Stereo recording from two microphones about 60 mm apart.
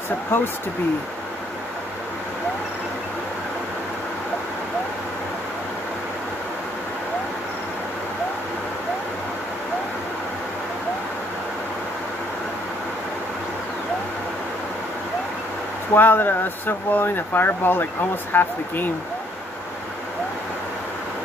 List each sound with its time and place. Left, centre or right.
0.3 s speech: left
15.9 s speech: left